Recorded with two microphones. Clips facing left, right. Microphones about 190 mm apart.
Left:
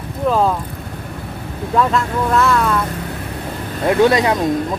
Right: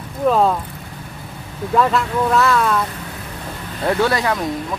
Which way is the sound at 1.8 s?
Centre (ahead or behind).